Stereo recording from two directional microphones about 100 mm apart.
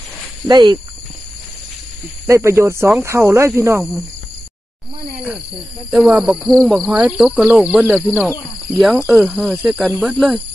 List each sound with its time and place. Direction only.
0.5 s speech: 50° right (ahead or behind)
2.2 s speech: 25° right (ahead or behind)
5.9 s speech: centre (ahead or behind)
6.5 s speech: 5° left (ahead or behind); by 8.3 s 15° right (ahead or behind)
8.6 s speech: centre (ahead or behind)